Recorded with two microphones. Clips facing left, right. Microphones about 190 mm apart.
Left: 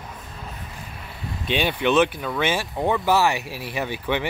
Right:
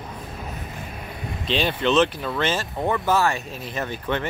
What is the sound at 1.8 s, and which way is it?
Speech, 15° left (ahead or behind).